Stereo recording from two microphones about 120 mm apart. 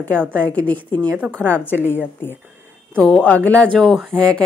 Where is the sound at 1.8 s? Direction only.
20° left (ahead or behind).